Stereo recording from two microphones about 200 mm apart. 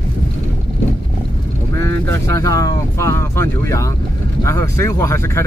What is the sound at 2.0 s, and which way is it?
Speech, 15° left (ahead or behind).